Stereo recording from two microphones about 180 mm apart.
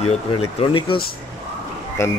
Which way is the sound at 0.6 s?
30° left (ahead or behind).